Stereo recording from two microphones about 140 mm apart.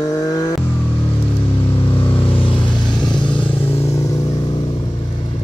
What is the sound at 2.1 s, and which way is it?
Vehicle, 40° left (ahead or behind).